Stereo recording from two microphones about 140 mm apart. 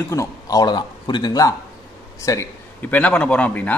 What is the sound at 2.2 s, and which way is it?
Speech, 15° left (ahead or behind).